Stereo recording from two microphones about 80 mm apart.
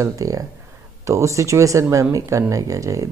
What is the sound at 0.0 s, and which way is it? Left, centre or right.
Speech, right.